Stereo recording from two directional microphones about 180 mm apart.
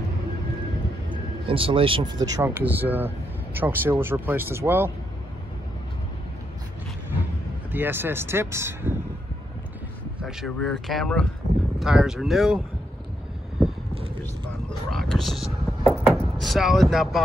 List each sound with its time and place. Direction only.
1.1 s speech: 30° right (ahead or behind); by 4.9 s 10° right (ahead or behind)
7.7 s speech: 10° right (ahead or behind)
10.2 s speech: centre (ahead or behind)
14.7 s speech: centre (ahead or behind)